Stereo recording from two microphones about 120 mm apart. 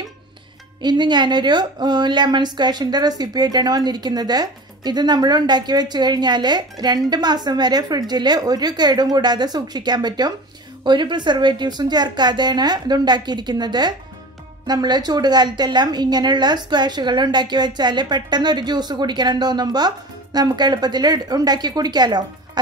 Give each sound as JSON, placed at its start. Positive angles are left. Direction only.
{"t": 0.8, "sound": "a woman's voice", "side_deg": -40}